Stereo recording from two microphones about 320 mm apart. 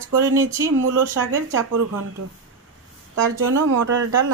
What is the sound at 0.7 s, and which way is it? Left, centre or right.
Speech, right.